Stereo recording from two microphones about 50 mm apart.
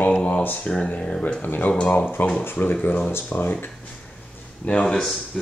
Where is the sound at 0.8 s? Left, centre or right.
Left.